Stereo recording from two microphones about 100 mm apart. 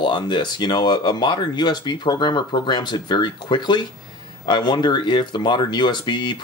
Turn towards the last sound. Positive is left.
turn(degrees=50)  # may be behind; listen again after turning